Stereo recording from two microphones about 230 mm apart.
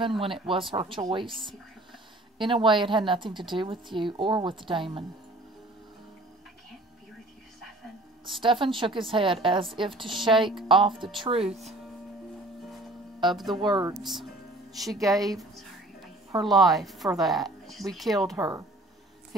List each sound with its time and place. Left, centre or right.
0.2 s a woman's voice: right
8.4 s a woman's voice: right
13.3 s a woman's voice: centre
13.6 s a woman's voice: centre
14.0 s a woman's voice: centre
14.9 s speech: centre
15.1 s a sound: centre
16.4 s a woman's voice: centre
18.4 s speech: centre